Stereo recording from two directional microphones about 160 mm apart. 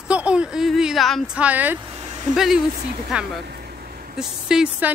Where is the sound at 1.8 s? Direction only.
35° right (ahead or behind).